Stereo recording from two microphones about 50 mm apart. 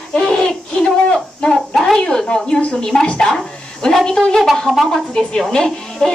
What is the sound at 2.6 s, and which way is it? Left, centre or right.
Speech, left.